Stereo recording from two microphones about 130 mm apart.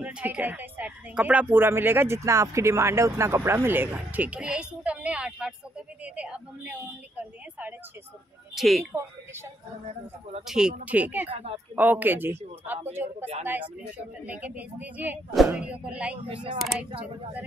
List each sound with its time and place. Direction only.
0.0 s a woman's voice: 10° right (ahead or behind)
8.5 s speech: centre (ahead or behind)
10.4 s a woman's voice: 5° right (ahead or behind)
11.2 s speech: 50° right (ahead or behind)
11.7 s a woman's voice: 15° right (ahead or behind)